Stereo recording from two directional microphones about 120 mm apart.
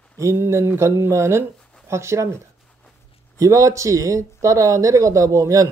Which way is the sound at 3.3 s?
25° right (ahead or behind).